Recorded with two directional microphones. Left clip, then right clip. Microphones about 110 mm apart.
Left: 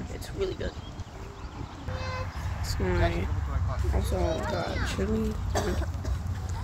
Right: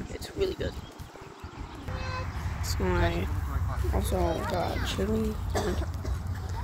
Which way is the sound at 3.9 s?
60° right (ahead or behind).